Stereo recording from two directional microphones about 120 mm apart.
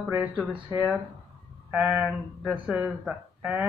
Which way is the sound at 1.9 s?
5° right (ahead or behind).